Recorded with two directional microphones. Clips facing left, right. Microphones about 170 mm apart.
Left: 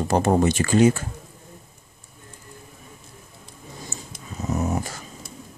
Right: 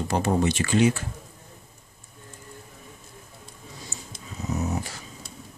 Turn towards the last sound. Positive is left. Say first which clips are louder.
# left 3 dB
turn(degrees=50)  # may be behind; listen again after turning